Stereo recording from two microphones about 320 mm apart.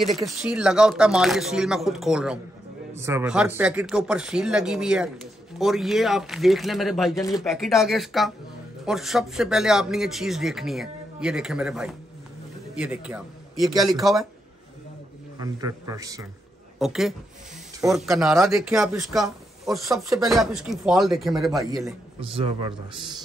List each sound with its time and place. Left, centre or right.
0.0 s a man's voice: centre
7.2 s speech: centre
7.4 s a man's voice: centre
15.3 s a man's voice: centre
22.2 s a man's voice: centre